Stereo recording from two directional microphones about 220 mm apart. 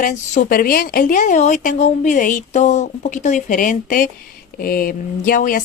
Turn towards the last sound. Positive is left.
turn(degrees=40)  # may be behind; listen again after turning